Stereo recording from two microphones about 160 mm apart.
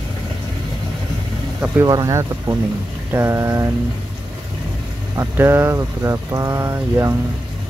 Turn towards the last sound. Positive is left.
turn(degrees=-20)  # may be behind; listen again after turning